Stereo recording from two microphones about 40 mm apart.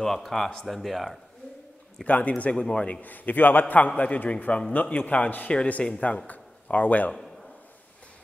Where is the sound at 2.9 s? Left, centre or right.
Left.